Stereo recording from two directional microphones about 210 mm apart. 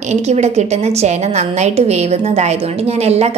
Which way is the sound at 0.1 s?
30° right (ahead or behind).